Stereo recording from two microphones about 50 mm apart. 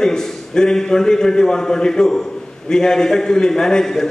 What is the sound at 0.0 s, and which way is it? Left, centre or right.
A man's voice, centre.